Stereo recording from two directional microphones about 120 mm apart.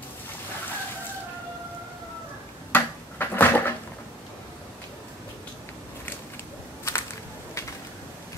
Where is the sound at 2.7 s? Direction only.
15° left (ahead or behind).